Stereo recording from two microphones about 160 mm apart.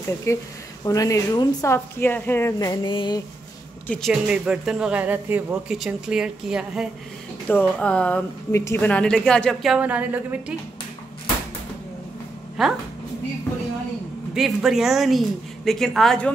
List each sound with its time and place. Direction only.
0.3 s speech: 20° left (ahead or behind)
3.8 s speech: 10° left (ahead or behind)
4.1 s speech: 5° right (ahead or behind)
7.4 s speech: 10° left (ahead or behind); by 10.2 s 10° right (ahead or behind)
12.6 s speech: centre (ahead or behind)
14.3 s speech: 5° right (ahead or behind)